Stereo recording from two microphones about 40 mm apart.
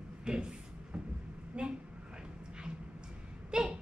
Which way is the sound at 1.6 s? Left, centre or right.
Right.